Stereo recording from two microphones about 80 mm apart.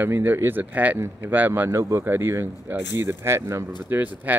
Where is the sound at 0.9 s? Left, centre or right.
Right.